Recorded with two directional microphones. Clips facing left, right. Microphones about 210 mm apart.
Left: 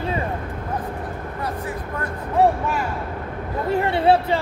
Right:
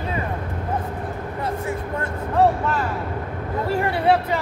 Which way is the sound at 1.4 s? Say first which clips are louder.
Right 3 dB; 25° right (ahead or behind).